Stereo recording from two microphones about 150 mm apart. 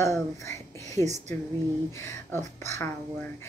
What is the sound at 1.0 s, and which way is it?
Speech, 50° right (ahead or behind).